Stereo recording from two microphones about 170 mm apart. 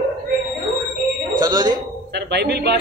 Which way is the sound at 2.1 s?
75° right (ahead or behind).